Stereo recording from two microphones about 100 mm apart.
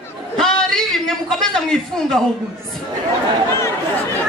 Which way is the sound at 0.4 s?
5° left (ahead or behind).